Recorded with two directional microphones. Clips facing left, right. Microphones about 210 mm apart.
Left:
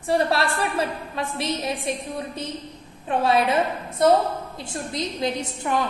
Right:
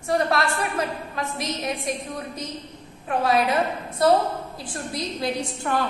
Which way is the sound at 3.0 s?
30° left (ahead or behind).